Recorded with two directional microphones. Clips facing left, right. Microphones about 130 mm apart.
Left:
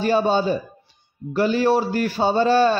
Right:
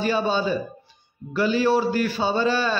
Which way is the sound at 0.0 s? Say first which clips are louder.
Left 4 dB; 45° left (ahead or behind).